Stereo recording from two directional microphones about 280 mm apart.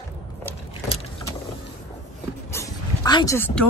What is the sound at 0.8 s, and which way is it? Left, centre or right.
Vehicle, centre.